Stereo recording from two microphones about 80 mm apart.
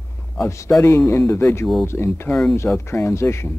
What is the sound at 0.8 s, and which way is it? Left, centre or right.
Speech, left.